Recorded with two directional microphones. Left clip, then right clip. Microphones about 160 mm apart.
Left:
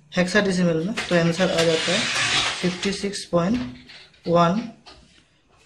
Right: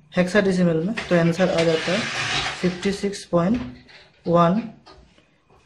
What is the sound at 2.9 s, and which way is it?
Speech, 20° right (ahead or behind).